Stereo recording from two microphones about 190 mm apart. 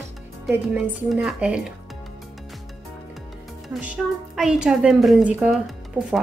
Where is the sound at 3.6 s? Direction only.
5° right (ahead or behind).